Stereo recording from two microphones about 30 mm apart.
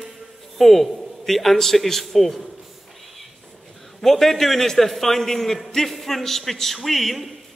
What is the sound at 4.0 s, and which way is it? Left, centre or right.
A man's voice, centre.